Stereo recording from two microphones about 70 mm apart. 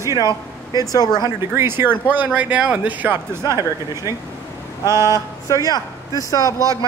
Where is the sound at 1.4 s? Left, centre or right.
Right.